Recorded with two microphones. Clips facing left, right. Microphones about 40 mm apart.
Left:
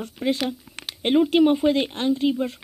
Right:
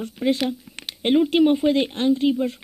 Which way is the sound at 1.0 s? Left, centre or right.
Centre.